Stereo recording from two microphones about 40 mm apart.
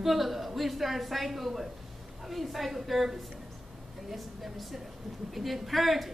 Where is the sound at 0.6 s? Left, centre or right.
Centre.